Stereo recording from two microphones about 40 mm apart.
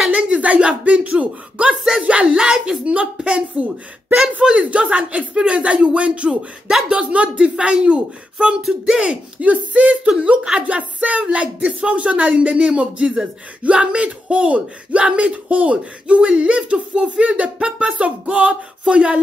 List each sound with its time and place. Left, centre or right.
0.1 s speech: right
2.2 s a woman's voice: centre
2.8 s speech: right
8.6 s a woman's voice: centre
9.4 s speech: right
10.7 s speech: right